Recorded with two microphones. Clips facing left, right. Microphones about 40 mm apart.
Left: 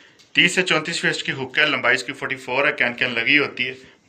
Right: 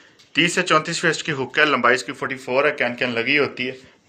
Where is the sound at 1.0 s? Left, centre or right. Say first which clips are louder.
Right 2 dB; centre.